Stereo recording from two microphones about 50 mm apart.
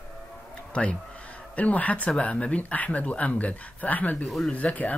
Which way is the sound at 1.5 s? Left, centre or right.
Left.